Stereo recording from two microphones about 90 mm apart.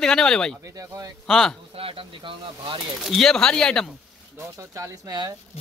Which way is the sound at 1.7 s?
90° right.